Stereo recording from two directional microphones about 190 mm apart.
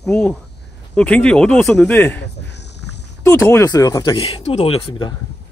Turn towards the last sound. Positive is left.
turn(degrees=30)  # may be behind; listen again after turning